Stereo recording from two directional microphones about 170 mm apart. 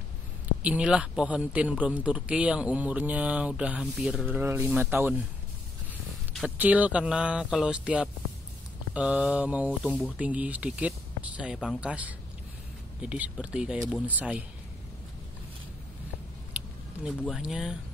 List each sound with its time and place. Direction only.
0.6 s a man's voice: 5° right (ahead or behind)
6.3 s a man's voice: 10° right (ahead or behind)
17.4 s speech: centre (ahead or behind)